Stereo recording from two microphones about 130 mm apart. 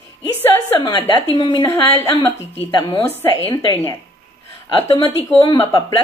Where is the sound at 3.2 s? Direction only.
15° left (ahead or behind).